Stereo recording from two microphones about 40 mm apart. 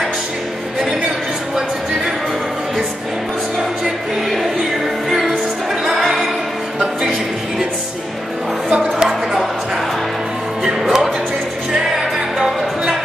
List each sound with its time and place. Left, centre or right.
4.3 s music: centre
5.9 s music: centre
8.8 s a sound: centre
10.6 s music: centre